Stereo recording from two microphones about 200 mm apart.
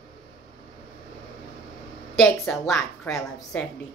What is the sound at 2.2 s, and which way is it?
A woman's voice, centre (ahead or behind).